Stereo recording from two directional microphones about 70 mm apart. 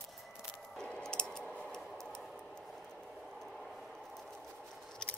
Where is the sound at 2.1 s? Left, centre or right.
Centre.